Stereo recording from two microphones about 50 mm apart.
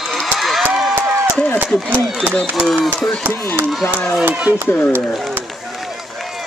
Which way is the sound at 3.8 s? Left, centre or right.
Left.